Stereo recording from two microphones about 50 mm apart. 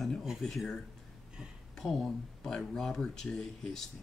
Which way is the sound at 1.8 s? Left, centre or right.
Centre.